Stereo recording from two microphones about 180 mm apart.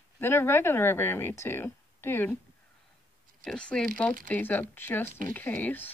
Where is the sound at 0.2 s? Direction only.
15° left (ahead or behind).